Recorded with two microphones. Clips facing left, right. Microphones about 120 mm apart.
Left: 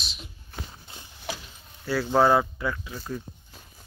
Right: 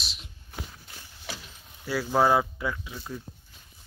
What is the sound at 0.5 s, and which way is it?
Walk, 15° right (ahead or behind).